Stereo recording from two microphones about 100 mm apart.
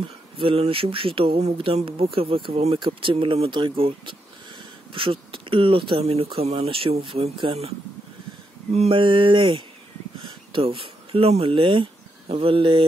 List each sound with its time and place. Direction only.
0.4 s speech: 65° right (ahead or behind)
2.8 s speech: 60° right (ahead or behind)
8.7 s speech: 75° right (ahead or behind)